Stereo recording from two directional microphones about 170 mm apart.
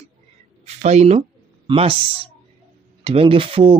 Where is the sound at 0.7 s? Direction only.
40° right (ahead or behind).